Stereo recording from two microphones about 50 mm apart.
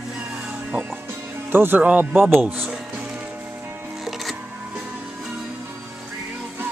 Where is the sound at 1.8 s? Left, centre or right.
Right.